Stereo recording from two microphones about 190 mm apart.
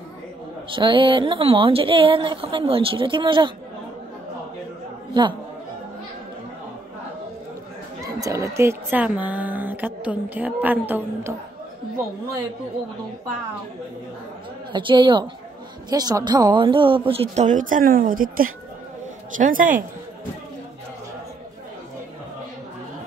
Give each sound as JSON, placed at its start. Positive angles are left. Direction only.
{"t": 0.7, "sound": "a woman's voice", "side_deg": -25}
{"t": 8.2, "sound": "speech", "side_deg": -15}
{"t": 14.7, "sound": "a woman's voice", "side_deg": -25}